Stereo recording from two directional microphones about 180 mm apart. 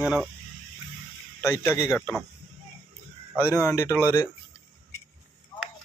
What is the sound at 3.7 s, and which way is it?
Speech, 15° left (ahead or behind).